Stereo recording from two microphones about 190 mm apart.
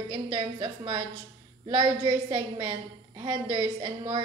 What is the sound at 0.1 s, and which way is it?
A woman's voice, 25° right (ahead or behind).